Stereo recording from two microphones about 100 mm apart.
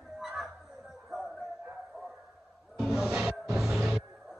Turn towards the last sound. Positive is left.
turn(degrees=-5)  # may be behind; listen again after turning